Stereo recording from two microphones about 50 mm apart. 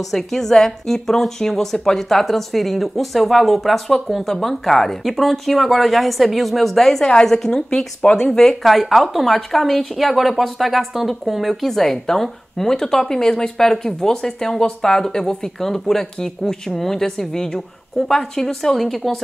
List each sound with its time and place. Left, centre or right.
0.1 s a woman's voice: centre
7.1 s a woman's voice: centre